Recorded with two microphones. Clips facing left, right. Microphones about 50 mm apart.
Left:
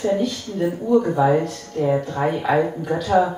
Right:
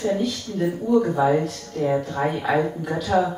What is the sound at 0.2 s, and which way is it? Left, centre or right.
Speech, centre.